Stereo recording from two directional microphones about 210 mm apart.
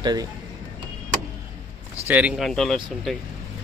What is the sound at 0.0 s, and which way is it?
Speech, 20° right (ahead or behind).